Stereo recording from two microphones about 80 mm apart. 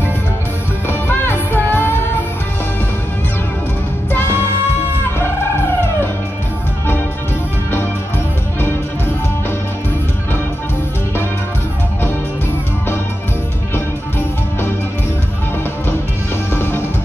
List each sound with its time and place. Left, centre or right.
0.8 s music: left
16.5 s music: left